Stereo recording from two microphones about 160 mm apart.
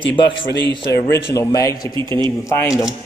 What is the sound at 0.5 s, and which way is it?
Speech, 90° left.